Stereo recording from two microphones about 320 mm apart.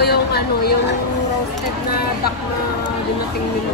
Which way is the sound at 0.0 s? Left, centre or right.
Left.